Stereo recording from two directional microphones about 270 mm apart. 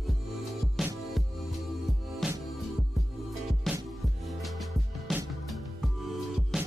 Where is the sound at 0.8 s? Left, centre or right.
Centre.